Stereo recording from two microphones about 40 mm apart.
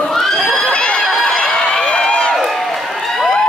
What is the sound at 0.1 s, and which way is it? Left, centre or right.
Children shouting, centre.